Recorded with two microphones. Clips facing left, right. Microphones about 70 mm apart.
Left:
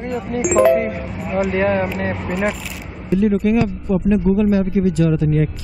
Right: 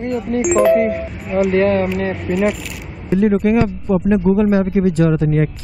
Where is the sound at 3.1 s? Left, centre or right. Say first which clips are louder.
Right 2 dB; right.